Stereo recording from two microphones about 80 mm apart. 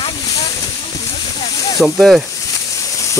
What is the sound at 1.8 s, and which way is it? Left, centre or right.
Speech, centre.